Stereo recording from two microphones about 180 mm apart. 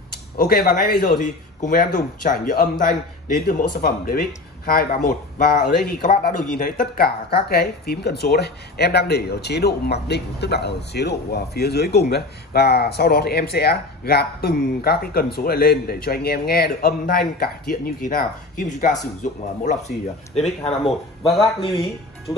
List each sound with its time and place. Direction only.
0.4 s a man's voice: 60° left (ahead or behind); by 20.9 s 35° left (ahead or behind)
21.2 s speech: centre (ahead or behind)
21.5 s speech: 30° left (ahead or behind)